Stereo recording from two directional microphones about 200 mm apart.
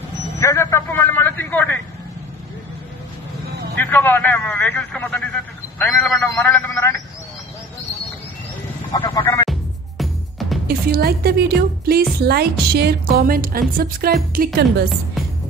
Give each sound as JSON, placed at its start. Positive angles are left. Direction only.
{"t": 0.4, "sound": "vehicle", "side_deg": 15}
{"t": 3.7, "sound": "a sound", "side_deg": 10}
{"t": 8.9, "sound": "music", "side_deg": 20}
{"t": 10.7, "sound": "music", "side_deg": -50}
{"t": 12.2, "sound": "a woman's voice", "side_deg": -55}